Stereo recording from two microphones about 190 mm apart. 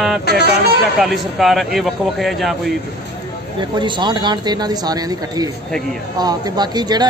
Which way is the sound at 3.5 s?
25° right (ahead or behind).